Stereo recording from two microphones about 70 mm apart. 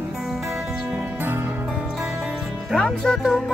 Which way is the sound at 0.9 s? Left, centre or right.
Right.